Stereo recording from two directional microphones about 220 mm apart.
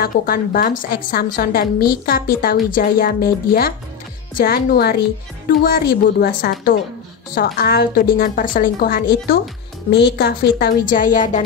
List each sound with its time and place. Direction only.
0.0 s a woman's voice: 40° left (ahead or behind)
9.8 s a woman's voice: 50° left (ahead or behind)